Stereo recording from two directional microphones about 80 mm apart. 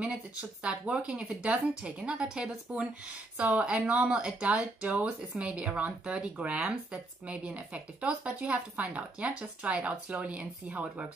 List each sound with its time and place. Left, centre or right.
0.0 s speech: centre